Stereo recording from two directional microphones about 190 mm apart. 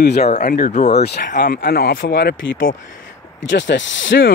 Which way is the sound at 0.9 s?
60° left (ahead or behind).